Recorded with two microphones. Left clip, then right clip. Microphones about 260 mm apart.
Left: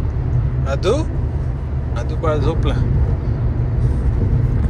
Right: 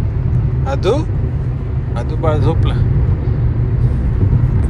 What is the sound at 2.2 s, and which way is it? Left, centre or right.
Speech, centre.